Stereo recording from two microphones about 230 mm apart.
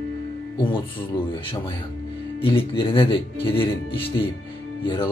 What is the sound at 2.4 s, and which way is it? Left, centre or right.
Speech, left.